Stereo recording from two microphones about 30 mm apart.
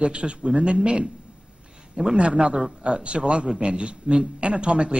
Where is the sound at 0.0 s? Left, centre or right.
Right.